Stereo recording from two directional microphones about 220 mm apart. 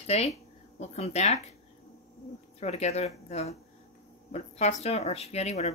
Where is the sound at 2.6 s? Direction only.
30° left (ahead or behind).